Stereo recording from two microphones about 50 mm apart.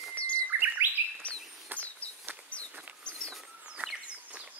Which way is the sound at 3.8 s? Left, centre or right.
Right.